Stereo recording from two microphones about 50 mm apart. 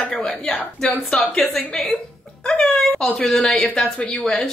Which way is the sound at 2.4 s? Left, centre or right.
Centre.